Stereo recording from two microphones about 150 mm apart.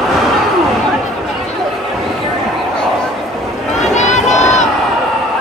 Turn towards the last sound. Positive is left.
turn(degrees=50)  # may be behind; listen again after turning